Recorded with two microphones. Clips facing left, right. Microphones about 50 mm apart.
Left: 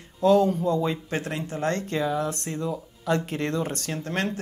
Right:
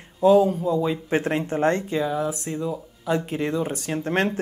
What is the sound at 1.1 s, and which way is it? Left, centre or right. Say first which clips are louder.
Speech: right 7 dB; right.